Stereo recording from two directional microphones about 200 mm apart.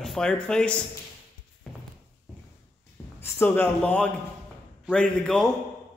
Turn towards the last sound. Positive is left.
turn(degrees=5)  # may be behind; listen again after turning